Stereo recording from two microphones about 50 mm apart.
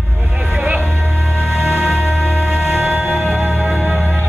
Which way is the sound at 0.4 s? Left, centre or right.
Centre.